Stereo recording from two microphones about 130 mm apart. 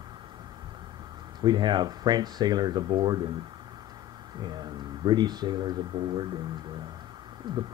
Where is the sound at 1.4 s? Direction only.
35° right (ahead or behind).